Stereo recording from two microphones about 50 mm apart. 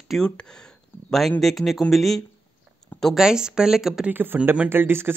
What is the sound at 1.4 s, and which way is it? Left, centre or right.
Speech, centre.